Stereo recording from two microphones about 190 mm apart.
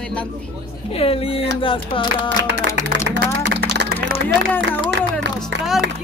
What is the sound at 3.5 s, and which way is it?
Music, 60° right (ahead or behind).